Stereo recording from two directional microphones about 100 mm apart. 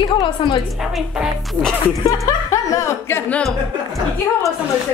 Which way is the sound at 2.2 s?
30° left (ahead or behind).